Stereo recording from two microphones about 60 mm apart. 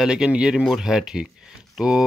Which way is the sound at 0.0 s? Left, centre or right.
Centre.